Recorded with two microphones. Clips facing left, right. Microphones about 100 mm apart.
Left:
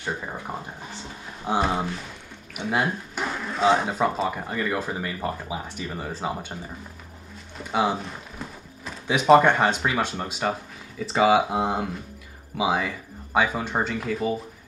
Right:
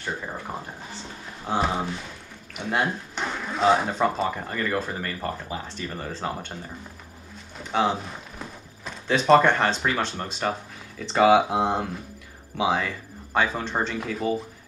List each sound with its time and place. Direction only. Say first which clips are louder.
1.6 s speech: even; 5° left (ahead or behind)
7.5 s clip-clop: even; 5° left (ahead or behind)
9.0 s speech: left 1 dB; 10° left (ahead or behind)